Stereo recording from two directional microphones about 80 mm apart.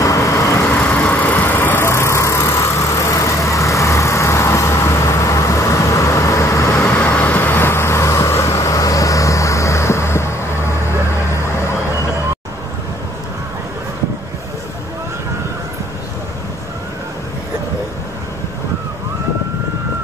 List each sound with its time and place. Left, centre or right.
0.0 s vehicle: left
0.7 s vehicle: centre; by 6.9 s left
7.1 s vehicle: left